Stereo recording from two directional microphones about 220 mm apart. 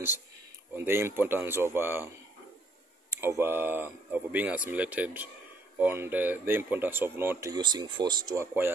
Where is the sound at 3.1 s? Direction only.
10° right (ahead or behind).